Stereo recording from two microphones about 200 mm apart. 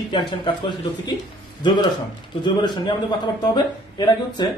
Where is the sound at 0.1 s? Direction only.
25° left (ahead or behind).